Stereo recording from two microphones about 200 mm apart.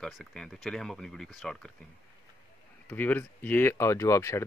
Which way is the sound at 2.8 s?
10° left (ahead or behind).